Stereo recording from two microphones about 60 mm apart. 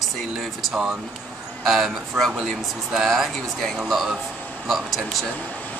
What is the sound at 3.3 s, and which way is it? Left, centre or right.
Speech, centre.